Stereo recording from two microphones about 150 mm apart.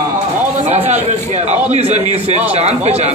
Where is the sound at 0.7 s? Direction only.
45° right (ahead or behind).